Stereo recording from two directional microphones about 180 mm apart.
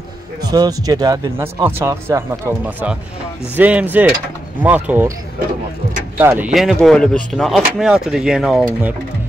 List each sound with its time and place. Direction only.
0.4 s speech: 20° right (ahead or behind)
1.8 s speech: 15° right (ahead or behind)
6.1 s speech: 10° right (ahead or behind)